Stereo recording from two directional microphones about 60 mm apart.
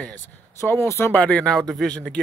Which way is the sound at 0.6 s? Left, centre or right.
Left.